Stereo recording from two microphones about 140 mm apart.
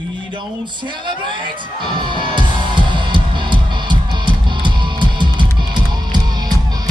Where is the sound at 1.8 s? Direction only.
35° right (ahead or behind).